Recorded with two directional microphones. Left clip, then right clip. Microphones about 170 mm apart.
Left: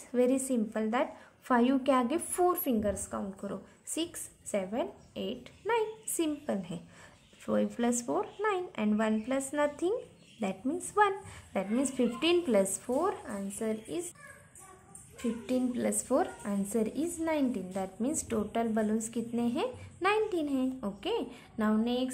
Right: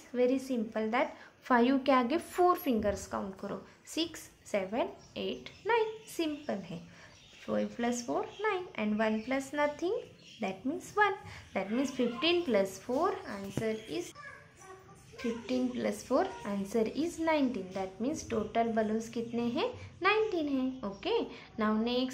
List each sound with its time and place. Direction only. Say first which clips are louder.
0.1 s a woman's voice: left 2 dB; 35° left (ahead or behind)
13.7 s a child's voice: even; 45° left (ahead or behind)
15.1 s a woman's voice: left 1 dB; 30° left (ahead or behind)